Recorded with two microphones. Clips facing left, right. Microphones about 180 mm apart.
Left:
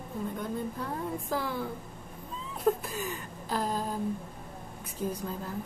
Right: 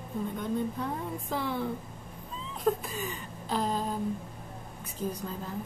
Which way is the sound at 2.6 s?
5° left (ahead or behind).